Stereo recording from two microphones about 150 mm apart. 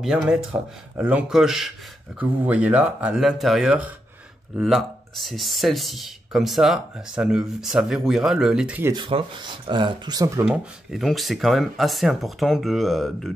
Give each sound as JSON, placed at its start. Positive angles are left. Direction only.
{"t": 0.0, "sound": "speech", "side_deg": -5}
{"t": 8.9, "sound": "speech", "side_deg": -30}
{"t": 10.5, "sound": "speech", "side_deg": -5}